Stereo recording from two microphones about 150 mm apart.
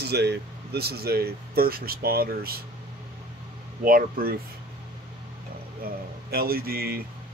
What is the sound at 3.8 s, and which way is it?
Speech, 75° right (ahead or behind).